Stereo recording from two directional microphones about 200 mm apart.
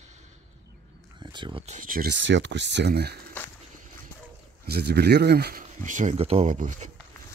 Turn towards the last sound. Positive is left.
turn(degrees=-40)  # may be behind; listen again after turning